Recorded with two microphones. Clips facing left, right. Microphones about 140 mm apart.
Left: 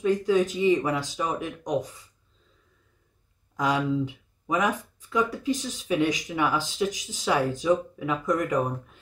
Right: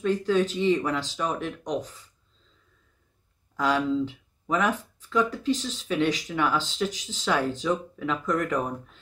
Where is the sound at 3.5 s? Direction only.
15° left (ahead or behind).